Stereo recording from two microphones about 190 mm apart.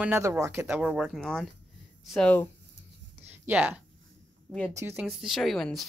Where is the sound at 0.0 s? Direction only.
10° right (ahead or behind); by 2.4 s 5° left (ahead or behind).